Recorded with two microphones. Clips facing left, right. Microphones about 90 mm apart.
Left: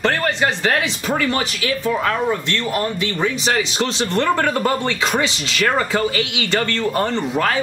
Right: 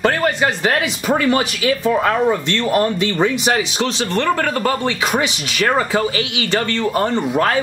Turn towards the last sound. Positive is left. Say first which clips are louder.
# right 3 dB
turn(degrees=-10)  # may be behind; listen again after turning